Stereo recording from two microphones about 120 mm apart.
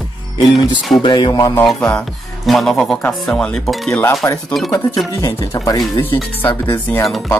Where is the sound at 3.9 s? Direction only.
25° left (ahead or behind).